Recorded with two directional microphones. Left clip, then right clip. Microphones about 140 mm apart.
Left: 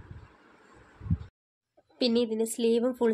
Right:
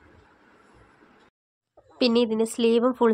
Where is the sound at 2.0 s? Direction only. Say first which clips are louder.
Right 5 dB; 25° right (ahead or behind).